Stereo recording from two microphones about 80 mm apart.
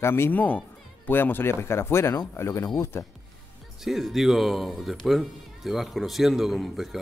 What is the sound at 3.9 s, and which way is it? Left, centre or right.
Speech, centre.